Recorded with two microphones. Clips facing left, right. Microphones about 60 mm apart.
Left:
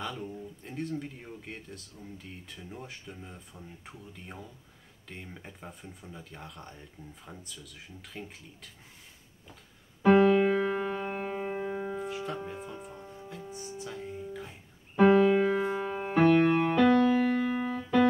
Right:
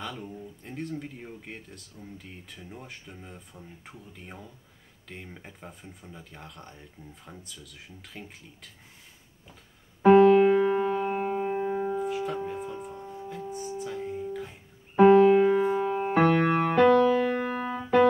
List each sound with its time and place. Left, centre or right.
0.0 s speech: centre
10.3 s music: right
10.6 s music: centre
15.0 s keyboard: centre
15.5 s music: centre
16.1 s music: right
16.5 s music: right